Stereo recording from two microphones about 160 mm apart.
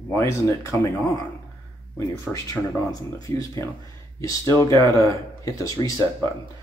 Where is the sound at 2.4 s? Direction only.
20° left (ahead or behind).